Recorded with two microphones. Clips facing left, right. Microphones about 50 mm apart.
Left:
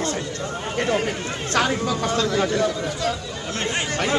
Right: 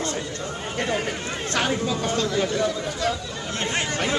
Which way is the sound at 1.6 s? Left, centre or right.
Left.